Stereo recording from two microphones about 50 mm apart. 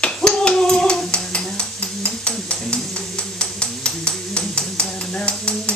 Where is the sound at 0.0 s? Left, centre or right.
Centre.